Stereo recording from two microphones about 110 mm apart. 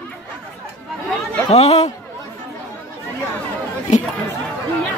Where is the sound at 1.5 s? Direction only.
80° left.